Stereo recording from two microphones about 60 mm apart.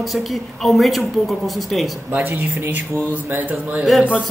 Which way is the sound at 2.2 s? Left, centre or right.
Right.